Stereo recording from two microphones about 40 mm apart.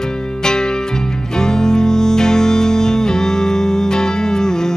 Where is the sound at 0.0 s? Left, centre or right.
Centre.